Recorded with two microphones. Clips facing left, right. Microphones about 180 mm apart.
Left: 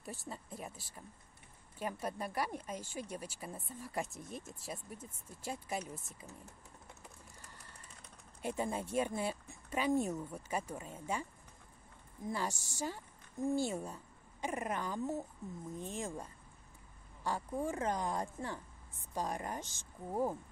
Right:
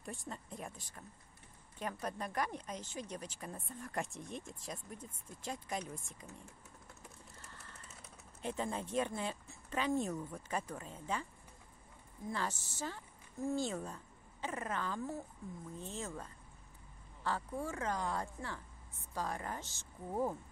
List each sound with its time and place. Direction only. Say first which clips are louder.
0.0 s speech: even; 5° left (ahead or behind)
8.4 s speech: left 2 dB; 10° left (ahead or behind)
12.3 s a woman's voice: left 1 dB; 10° left (ahead or behind)